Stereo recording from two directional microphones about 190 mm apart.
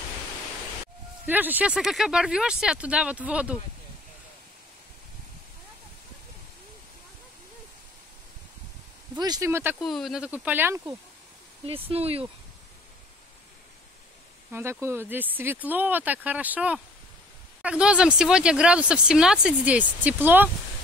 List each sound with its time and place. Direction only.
1.2 s speech: 10° right (ahead or behind)
9.2 s speech: 20° right (ahead or behind)
9.8 s speech: centre (ahead or behind)
11.6 s speech: 30° right (ahead or behind)
14.5 s speech: 15° right (ahead or behind)